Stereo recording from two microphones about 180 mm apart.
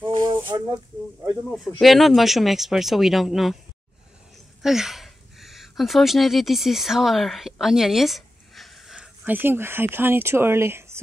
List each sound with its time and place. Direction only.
0.1 s a sound: 25° right (ahead or behind)
1.5 s speech: centre (ahead or behind)
4.6 s speech: centre (ahead or behind)